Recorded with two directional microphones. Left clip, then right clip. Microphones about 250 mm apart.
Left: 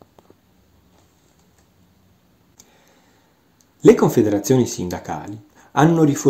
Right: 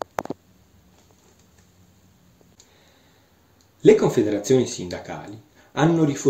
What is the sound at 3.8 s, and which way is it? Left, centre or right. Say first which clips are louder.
Speech: left 3 dB; left.